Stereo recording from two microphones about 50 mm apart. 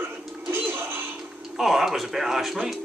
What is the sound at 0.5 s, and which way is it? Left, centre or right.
Music, right.